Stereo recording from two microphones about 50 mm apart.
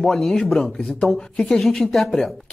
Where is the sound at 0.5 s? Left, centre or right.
Centre.